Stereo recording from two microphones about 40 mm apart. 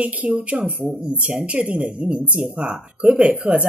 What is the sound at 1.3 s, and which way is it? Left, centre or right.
A woman's voice, right.